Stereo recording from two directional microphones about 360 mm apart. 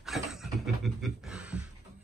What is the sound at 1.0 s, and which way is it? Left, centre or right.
Speech, centre.